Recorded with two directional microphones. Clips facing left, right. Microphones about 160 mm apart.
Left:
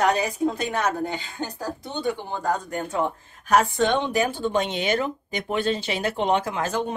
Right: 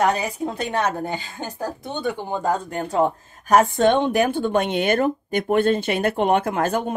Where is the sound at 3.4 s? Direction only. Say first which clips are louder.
Right 4 dB; 50° right (ahead or behind).